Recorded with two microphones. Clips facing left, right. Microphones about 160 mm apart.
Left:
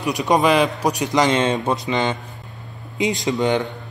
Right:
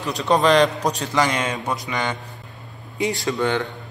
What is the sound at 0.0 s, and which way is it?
Speech, 15° left (ahead or behind).